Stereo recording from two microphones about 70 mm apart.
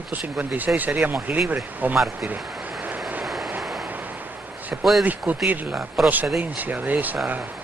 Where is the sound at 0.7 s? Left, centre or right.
Right.